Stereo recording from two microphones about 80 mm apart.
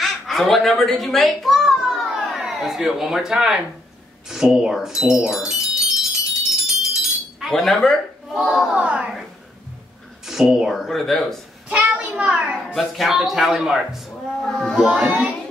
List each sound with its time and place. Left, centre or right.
0.0 s a sound: centre
4.3 s speech: centre
6.6 s a sound: centre
8.7 s speech: centre
10.2 s speech: centre
11.7 s a sound: centre
12.7 s speech: centre
14.4 s speech: centre
14.8 s speech: centre